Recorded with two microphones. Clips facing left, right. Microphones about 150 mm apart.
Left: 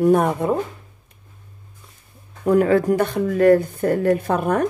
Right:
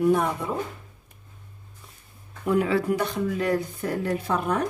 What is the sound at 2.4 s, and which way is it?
Speech, 45° left (ahead or behind).